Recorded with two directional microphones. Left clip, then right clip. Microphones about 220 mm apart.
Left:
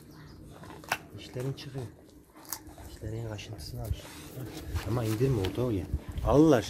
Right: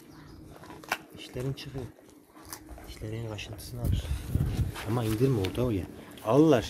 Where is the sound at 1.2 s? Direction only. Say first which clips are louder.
Right 1 dB; 15° right (ahead or behind).